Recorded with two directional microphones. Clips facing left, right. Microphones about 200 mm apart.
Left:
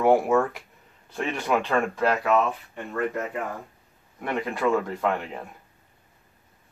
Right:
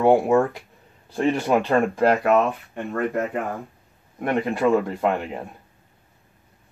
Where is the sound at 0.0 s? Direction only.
25° right (ahead or behind); by 2.8 s 50° right (ahead or behind).